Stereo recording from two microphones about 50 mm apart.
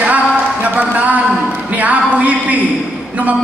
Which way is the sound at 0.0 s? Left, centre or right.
Right.